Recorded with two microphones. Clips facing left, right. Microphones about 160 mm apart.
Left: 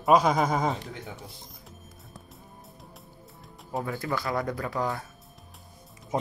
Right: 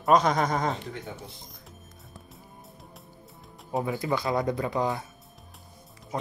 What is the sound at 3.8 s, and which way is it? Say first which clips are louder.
Speech: right 3 dB; 15° right (ahead or behind).